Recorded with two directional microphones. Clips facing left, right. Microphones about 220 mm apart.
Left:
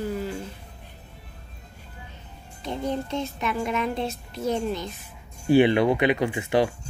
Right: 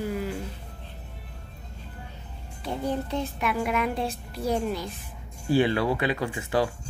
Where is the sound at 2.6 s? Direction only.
10° right (ahead or behind).